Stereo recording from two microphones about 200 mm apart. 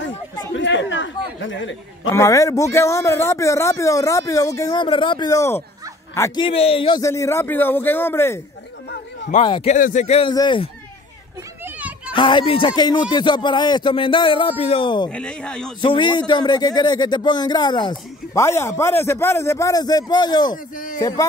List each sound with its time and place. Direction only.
0.6 s speech: 65° left (ahead or behind)
2.0 s a man's voice: 15° left (ahead or behind)
6.4 s a man's voice: 30° left (ahead or behind); by 8.4 s 10° left (ahead or behind)
9.3 s speech: 25° left (ahead or behind)
9.8 s speech: 40° left (ahead or behind); by 10.7 s 20° left (ahead or behind)
12.1 s speech: 25° left (ahead or behind)
15.0 s speech: 5° left (ahead or behind)
15.8 s speech: 25° left (ahead or behind)